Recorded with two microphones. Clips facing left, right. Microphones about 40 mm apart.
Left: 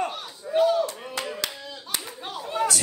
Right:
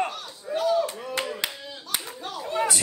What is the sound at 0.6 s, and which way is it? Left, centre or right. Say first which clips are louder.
Chop: left 2 dB; centre.